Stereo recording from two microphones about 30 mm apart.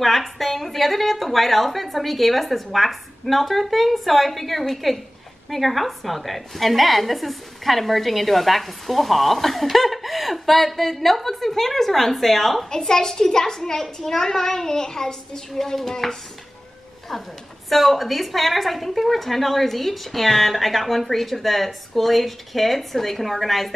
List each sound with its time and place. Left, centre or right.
0.0 s a woman's voice: centre
12.6 s a child's voice: left
15.5 s speech: centre
17.1 s a woman's voice: centre